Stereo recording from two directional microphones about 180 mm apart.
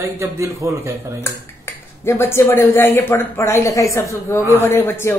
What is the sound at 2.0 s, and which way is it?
A woman's voice, 15° left (ahead or behind).